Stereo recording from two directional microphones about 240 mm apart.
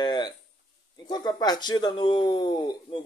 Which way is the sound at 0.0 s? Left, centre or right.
Centre.